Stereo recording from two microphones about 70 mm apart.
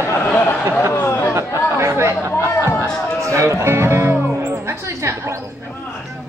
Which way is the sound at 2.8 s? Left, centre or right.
Right.